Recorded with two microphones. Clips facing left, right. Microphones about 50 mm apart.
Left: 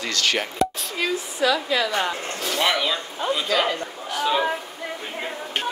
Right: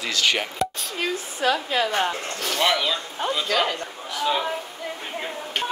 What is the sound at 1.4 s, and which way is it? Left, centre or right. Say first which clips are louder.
Speech: left 1 dB; right.